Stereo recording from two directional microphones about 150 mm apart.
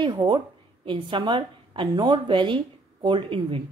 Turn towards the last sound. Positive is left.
turn(degrees=-35)  # may be behind; listen again after turning